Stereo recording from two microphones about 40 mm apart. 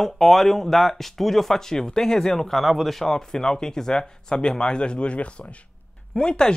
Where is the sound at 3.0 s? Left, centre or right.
Centre; by 5.5 s left.